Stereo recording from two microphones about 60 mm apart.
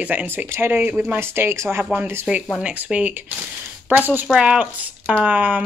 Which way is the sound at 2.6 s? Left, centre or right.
Right.